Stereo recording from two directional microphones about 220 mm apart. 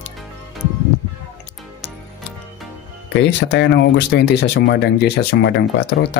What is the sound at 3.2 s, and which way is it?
Speech, 55° left (ahead or behind).